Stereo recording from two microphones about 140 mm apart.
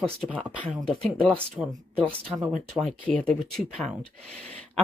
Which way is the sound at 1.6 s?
20° right (ahead or behind).